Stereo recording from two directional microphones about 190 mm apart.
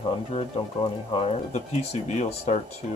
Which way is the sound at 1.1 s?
35° left (ahead or behind).